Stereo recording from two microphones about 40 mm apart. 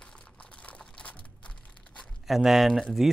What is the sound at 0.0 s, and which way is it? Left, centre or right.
Crumpling, left.